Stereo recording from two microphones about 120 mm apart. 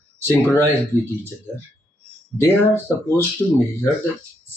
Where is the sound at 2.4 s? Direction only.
20° left (ahead or behind).